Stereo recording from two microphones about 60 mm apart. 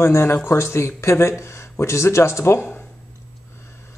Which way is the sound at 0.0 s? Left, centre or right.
Left.